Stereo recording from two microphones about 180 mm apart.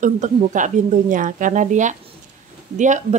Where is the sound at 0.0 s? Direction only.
45° right (ahead or behind).